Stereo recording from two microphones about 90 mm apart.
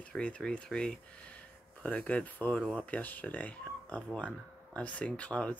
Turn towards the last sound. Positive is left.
turn(degrees=10)  # may be behind; listen again after turning